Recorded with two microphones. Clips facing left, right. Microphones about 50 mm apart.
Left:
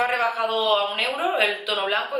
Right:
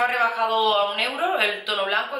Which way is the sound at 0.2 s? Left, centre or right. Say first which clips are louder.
Right 2 dB; centre.